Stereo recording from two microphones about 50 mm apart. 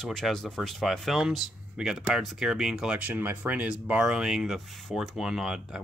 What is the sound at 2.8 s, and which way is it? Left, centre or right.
Speech, right.